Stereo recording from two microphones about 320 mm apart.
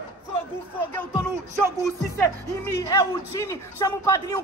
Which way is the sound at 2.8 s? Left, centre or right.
Centre.